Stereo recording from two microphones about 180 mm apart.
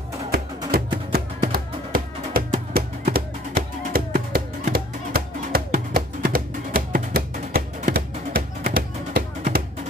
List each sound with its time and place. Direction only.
0.7 s music: 55° right (ahead or behind)